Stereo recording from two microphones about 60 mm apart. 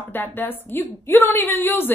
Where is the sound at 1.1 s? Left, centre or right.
Left.